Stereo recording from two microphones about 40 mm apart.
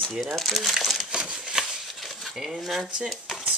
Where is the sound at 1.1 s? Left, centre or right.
Right.